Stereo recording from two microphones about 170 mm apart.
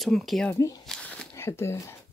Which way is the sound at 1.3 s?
15° left (ahead or behind).